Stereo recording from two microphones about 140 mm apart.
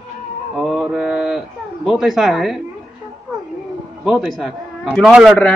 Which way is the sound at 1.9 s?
5° right (ahead or behind).